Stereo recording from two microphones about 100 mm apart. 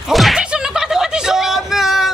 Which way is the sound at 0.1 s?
Centre (ahead or behind).